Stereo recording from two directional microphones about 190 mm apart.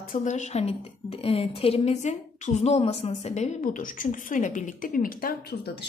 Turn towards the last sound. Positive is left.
turn(degrees=55)  # may be behind; listen again after turning